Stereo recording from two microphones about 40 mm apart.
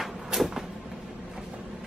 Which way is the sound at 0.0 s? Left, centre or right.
Centre.